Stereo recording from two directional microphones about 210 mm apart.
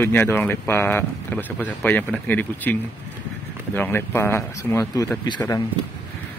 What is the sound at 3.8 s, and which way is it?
Speech, 10° left (ahead or behind).